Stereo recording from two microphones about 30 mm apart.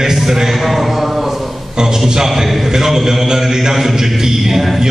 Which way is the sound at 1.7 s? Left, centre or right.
Right.